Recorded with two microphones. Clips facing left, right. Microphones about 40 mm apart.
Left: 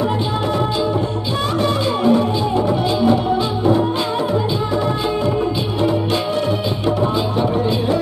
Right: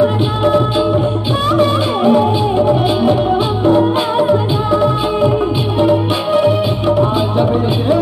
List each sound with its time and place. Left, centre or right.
1.6 s music: centre
5.8 s music: centre